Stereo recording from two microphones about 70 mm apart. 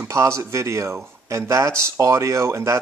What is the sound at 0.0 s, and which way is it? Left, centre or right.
A man's voice, right.